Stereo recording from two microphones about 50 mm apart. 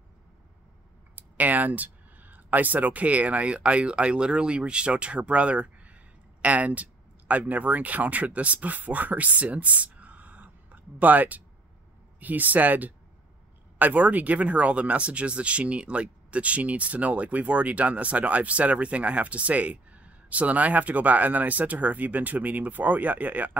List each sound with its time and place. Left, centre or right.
1.1 s speech: right